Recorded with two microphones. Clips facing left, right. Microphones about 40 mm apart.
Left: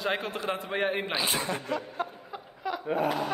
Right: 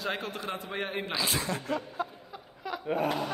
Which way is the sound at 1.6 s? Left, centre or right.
Left.